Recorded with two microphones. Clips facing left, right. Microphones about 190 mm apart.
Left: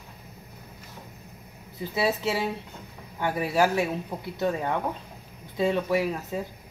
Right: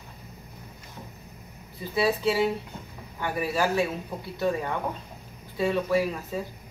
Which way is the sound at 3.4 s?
20° left (ahead or behind).